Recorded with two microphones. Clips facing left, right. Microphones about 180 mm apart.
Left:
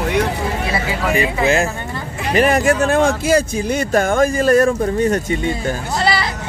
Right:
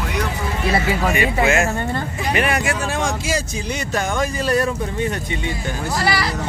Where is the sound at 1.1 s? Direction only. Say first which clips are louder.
Left 4 dB; 35° left (ahead or behind).